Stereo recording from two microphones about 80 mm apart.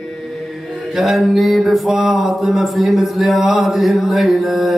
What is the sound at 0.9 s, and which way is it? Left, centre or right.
Mantra, centre.